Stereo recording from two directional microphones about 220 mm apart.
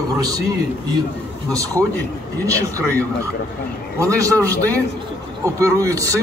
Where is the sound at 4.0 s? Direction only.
15° right (ahead or behind).